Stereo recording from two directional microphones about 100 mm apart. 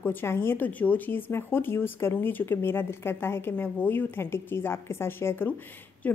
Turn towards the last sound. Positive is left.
turn(degrees=20)  # may be behind; listen again after turning